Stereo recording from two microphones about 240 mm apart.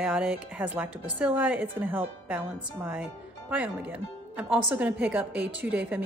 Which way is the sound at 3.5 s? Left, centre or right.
Centre.